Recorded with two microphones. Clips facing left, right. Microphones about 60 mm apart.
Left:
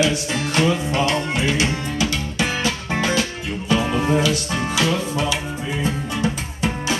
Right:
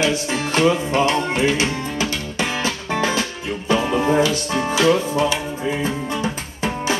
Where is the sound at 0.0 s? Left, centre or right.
Right.